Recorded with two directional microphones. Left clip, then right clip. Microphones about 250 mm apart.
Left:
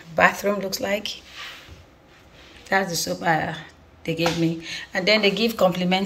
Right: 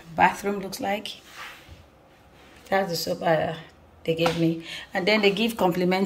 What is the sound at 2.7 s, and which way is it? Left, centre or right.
Speech, centre.